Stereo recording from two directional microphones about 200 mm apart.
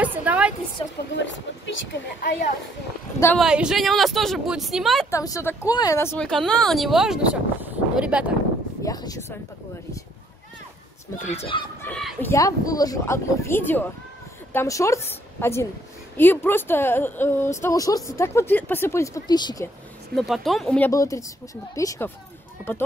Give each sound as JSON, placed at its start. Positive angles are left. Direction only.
{"t": 0.0, "sound": "music", "side_deg": -10}
{"t": 1.1, "sound": "speech", "side_deg": 65}
{"t": 3.3, "sound": "speech", "side_deg": -5}
{"t": 5.1, "sound": "a woman's voice", "side_deg": 15}
{"t": 8.8, "sound": "speech", "side_deg": 20}
{"t": 11.1, "sound": "speech", "side_deg": 35}
{"t": 11.8, "sound": "speech", "side_deg": 0}
{"t": 12.3, "sound": "a woman's voice", "side_deg": 15}
{"t": 20.2, "sound": "speech", "side_deg": 0}
{"t": 20.9, "sound": "a woman's voice", "side_deg": 15}